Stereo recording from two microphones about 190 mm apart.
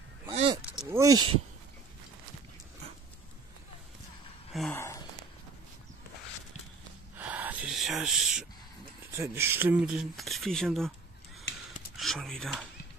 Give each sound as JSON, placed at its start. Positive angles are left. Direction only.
{"t": 0.6, "sound": "a sound", "side_deg": -5}
{"t": 4.5, "sound": "gasp", "side_deg": 0}
{"t": 4.7, "sound": "a sound", "side_deg": 15}
{"t": 7.2, "sound": "gasp", "side_deg": -10}
{"t": 9.1, "sound": "speech", "side_deg": -15}
{"t": 12.0, "sound": "speech", "side_deg": 0}